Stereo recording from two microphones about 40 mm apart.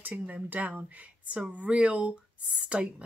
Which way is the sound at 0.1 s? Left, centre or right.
Right.